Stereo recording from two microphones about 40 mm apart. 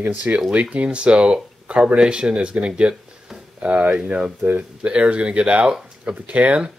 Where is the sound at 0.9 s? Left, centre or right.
Right.